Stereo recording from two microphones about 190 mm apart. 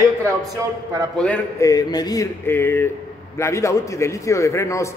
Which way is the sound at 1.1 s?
5° left (ahead or behind).